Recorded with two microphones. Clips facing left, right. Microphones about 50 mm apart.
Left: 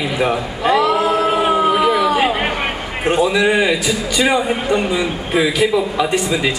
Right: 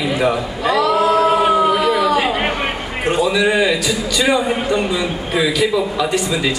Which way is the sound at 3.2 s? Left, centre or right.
Centre.